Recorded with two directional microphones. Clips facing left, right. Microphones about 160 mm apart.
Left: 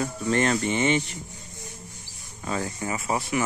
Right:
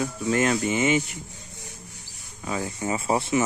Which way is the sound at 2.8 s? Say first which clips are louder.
Right 6 dB; 25° right (ahead or behind).